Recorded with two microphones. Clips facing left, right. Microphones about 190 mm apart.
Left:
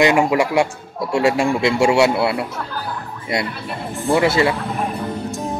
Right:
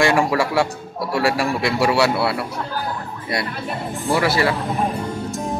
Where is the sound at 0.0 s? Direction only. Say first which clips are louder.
Left 2 dB; 20° left (ahead or behind).